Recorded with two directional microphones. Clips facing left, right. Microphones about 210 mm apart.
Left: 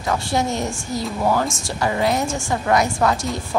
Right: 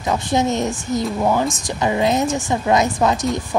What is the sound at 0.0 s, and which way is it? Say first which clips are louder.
A woman's voice: right 3 dB; 20° right (ahead or behind).